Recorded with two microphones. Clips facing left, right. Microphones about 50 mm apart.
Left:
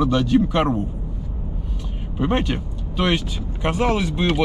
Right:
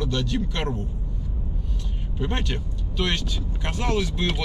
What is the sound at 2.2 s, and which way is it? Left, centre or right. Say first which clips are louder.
Speech: left 7 dB; centre.